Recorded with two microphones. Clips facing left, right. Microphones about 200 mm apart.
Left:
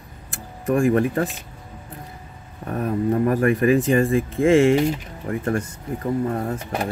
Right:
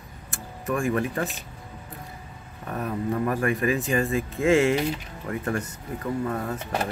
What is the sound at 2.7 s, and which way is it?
Speech, 35° left (ahead or behind).